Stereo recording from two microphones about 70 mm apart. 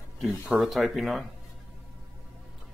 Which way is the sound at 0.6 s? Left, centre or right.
Centre.